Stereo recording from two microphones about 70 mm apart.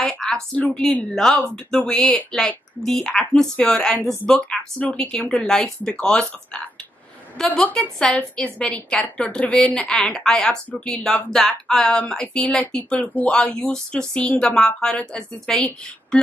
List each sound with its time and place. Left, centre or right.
0.0 s a sound: centre
0.7 s speech: centre
4.4 s speech: centre
8.1 s a woman's voice: centre